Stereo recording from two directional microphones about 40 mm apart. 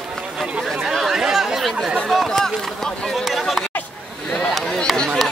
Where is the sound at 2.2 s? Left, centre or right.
Centre.